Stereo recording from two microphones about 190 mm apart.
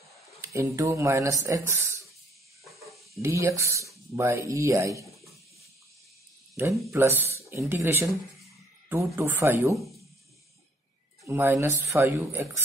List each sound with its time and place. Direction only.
0.4 s speech: 15° right (ahead or behind)
2.6 s snake: centre (ahead or behind)
3.2 s speech: 15° right (ahead or behind)
6.6 s speech: 10° right (ahead or behind)
11.2 s speech: 10° right (ahead or behind)